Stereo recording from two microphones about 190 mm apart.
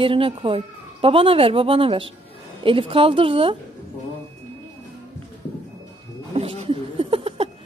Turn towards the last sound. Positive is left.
turn(degrees=-30)  # may be behind; listen again after turning